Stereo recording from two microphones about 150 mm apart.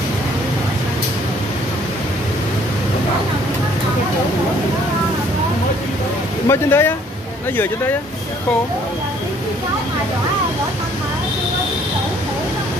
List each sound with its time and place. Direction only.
6.4 s speech: 15° left (ahead or behind)